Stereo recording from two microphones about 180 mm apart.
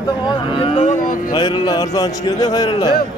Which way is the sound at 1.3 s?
25° left (ahead or behind).